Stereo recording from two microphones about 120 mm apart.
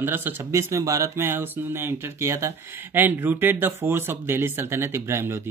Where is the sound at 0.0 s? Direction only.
20° right (ahead or behind).